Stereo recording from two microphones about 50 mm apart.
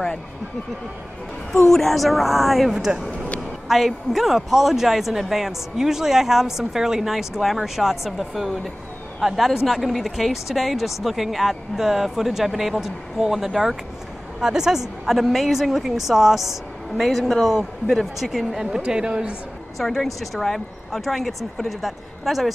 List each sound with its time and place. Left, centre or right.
1.7 s a man's voice: centre
19.8 s a man's voice: centre